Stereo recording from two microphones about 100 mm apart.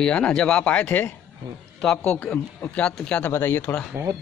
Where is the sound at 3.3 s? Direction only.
25° left (ahead or behind).